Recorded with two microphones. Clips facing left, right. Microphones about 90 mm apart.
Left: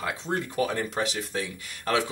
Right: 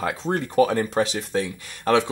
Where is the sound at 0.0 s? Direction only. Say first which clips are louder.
Right 5 dB; 40° right (ahead or behind).